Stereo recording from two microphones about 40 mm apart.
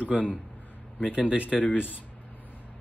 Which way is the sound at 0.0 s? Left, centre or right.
Right.